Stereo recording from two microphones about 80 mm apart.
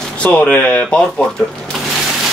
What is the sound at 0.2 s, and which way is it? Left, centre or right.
Speech, centre.